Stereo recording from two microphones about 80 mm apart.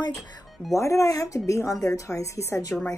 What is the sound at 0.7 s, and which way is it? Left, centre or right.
Speech, left.